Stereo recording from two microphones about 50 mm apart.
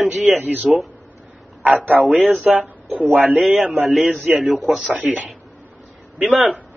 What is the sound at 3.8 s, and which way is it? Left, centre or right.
Speech, centre.